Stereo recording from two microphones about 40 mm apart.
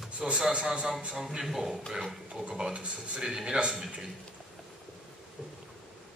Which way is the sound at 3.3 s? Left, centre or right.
Centre.